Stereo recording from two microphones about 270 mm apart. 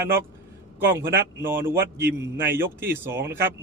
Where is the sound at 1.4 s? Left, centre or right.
Centre.